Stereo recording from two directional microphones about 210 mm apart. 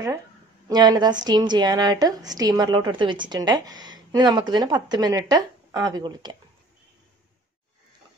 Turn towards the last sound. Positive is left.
turn(degrees=-20)  # may be behind; listen again after turning